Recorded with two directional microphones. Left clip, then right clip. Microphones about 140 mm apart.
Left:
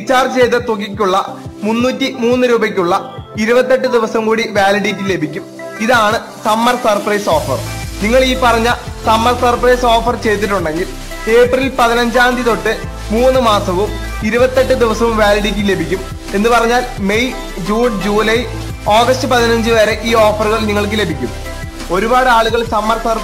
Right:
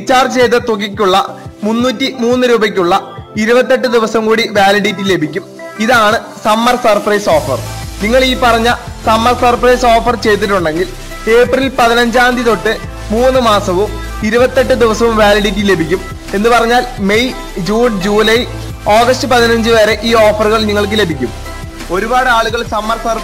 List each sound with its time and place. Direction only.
0.0 s speech: 35° right (ahead or behind)
21.9 s speech: 20° right (ahead or behind)